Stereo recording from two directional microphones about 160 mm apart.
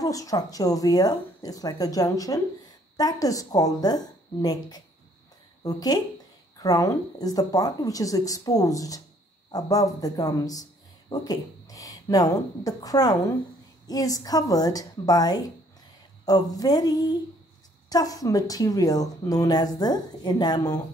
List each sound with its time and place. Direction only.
0.0 s speech: 20° left (ahead or behind)